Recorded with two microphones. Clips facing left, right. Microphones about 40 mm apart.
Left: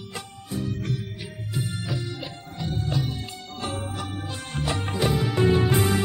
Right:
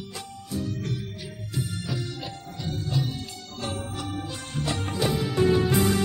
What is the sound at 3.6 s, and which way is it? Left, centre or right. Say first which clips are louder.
Music: left 1 dB; centre.